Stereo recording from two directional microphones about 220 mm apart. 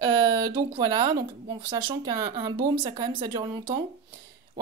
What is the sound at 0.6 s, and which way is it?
Speech, 20° right (ahead or behind).